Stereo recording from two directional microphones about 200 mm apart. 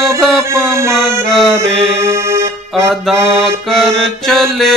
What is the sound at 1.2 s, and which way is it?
Music, 5° left (ahead or behind).